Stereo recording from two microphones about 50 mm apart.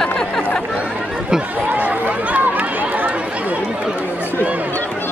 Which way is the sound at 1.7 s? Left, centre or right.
Right.